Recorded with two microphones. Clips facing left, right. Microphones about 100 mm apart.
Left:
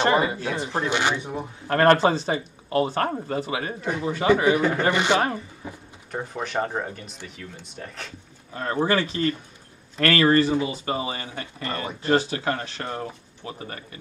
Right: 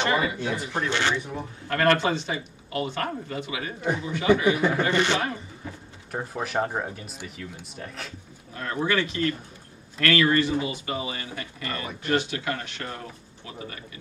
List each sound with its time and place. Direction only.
0.2 s speech: 35° left (ahead or behind)
0.8 s speech: 15° left (ahead or behind)
1.7 s speech: 35° left (ahead or behind)
4.6 s speech: centre (ahead or behind)
4.9 s speech: 15° left (ahead or behind)
6.1 s speech: 5° right (ahead or behind)
8.7 s speech: 35° left (ahead or behind)